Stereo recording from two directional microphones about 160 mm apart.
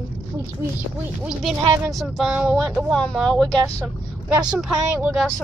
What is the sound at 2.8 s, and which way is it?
Speech, 5° left (ahead or behind).